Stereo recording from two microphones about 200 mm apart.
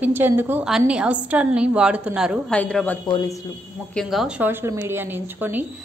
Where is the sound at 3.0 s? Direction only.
20° left (ahead or behind).